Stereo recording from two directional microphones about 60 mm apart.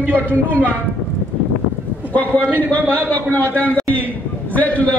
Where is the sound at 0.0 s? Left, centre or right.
Right.